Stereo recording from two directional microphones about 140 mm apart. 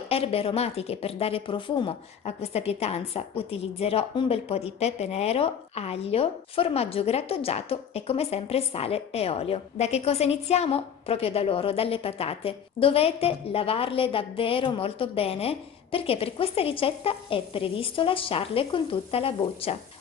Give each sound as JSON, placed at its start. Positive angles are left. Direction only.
{"t": 0.1, "sound": "a woman's voice", "side_deg": 45}